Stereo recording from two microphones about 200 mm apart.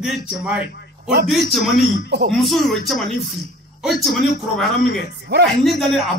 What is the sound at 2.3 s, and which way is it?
Speech, centre (ahead or behind).